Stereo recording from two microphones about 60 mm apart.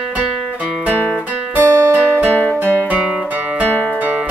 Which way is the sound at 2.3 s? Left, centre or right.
Left.